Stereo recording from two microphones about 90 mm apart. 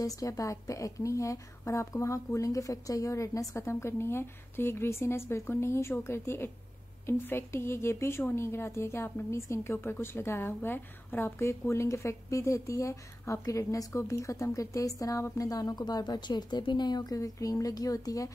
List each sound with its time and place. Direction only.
0.0 s a woman's voice: 40° left (ahead or behind)